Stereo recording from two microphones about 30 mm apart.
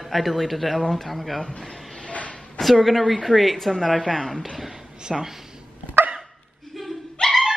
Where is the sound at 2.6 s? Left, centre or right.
Centre.